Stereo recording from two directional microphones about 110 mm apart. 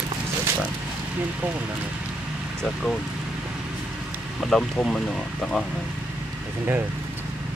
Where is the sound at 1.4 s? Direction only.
15° right (ahead or behind).